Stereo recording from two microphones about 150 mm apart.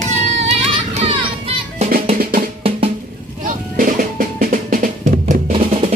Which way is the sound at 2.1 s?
75° right (ahead or behind).